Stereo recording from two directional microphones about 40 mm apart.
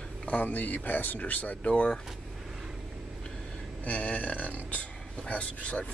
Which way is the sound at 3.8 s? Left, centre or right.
Left.